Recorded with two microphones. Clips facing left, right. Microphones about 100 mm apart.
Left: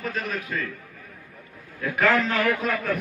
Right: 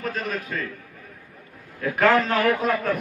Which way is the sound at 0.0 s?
40° right (ahead or behind).